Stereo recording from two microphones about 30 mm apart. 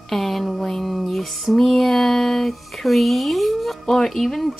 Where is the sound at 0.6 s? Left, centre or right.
Centre.